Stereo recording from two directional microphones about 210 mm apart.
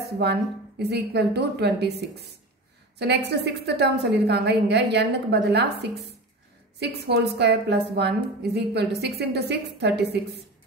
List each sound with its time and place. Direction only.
0.2 s a woman's voice: 50° right (ahead or behind)
3.0 s a woman's voice: 50° right (ahead or behind)